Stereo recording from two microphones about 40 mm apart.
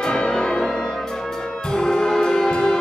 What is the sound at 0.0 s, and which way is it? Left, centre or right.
Music, centre.